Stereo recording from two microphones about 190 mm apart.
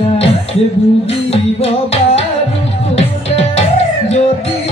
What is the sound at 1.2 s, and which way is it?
Music, 30° left (ahead or behind).